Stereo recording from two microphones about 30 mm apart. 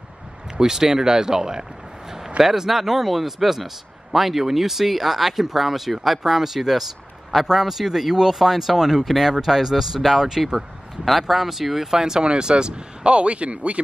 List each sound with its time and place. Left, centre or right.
0.6 s speech: centre
12.0 s speech: right